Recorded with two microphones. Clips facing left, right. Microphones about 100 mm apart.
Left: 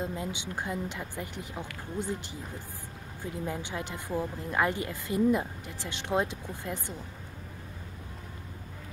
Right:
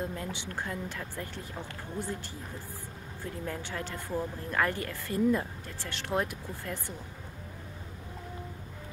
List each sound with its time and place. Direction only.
0.0 s speech: 20° left (ahead or behind)
3.4 s speech: 15° left (ahead or behind)